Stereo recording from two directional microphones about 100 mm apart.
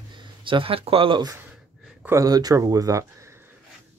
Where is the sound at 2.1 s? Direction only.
40° right (ahead or behind).